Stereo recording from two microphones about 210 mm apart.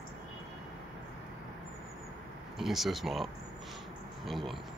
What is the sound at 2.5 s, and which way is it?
Speech, centre (ahead or behind).